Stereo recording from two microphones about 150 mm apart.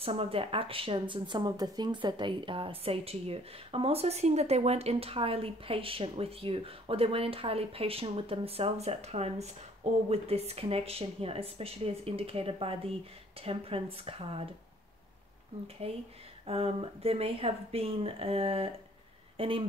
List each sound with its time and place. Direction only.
0.0 s speech: 40° right (ahead or behind)
15.8 s speech: 40° right (ahead or behind)